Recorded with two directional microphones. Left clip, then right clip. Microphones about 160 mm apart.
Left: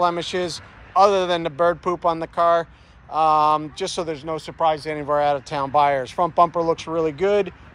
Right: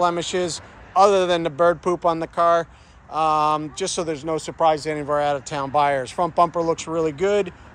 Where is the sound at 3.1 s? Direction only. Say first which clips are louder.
Left 2 dB; 15° right (ahead or behind).